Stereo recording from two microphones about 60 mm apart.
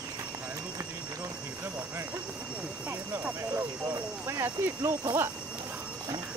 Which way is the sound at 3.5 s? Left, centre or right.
Right.